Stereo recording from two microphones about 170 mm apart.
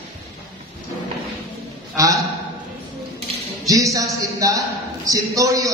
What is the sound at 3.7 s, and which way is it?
Mantra, 20° right (ahead or behind).